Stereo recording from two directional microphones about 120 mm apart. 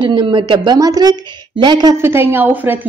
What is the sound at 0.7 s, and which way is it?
Speech, 30° right (ahead or behind).